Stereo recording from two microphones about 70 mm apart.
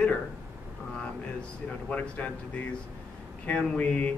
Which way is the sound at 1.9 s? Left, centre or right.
Centre.